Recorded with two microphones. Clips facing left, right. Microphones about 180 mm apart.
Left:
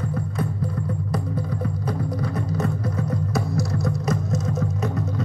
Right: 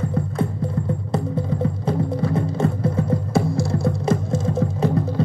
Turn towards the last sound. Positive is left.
turn(degrees=-30)  # may be behind; listen again after turning